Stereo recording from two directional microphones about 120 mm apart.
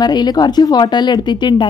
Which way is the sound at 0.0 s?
35° left (ahead or behind).